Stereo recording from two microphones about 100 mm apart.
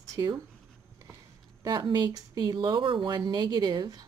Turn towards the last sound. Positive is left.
turn(degrees=-45)  # may be behind; listen again after turning